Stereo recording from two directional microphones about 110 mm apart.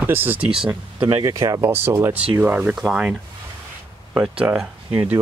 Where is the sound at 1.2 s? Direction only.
35° right (ahead or behind).